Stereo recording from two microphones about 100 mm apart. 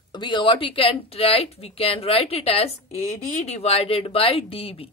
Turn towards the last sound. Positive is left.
turn(degrees=70)  # may be behind; listen again after turning